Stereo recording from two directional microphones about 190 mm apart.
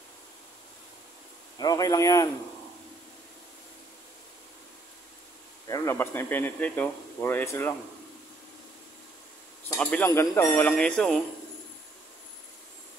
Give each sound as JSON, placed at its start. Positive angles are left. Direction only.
{"t": 1.6, "sound": "speech", "side_deg": 20}
{"t": 5.7, "sound": "speech", "side_deg": 10}
{"t": 9.8, "sound": "speech", "side_deg": 5}